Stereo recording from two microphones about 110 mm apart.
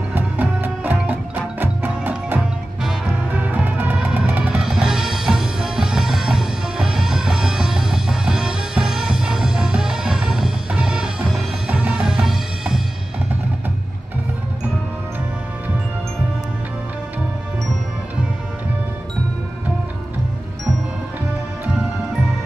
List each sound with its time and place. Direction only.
0.1 s music: 15° right (ahead or behind)